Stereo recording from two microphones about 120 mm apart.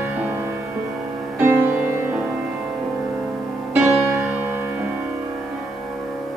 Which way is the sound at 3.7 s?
15° right (ahead or behind).